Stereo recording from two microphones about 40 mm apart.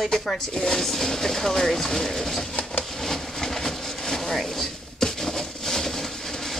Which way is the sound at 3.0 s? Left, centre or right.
Centre.